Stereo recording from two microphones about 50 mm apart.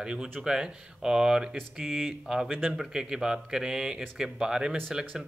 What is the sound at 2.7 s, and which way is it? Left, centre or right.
Speech, centre.